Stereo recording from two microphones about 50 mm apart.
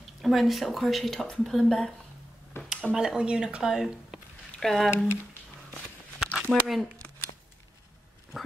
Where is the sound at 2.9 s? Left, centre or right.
Centre.